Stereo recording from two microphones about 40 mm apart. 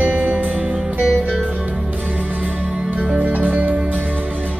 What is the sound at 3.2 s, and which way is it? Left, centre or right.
Music, right.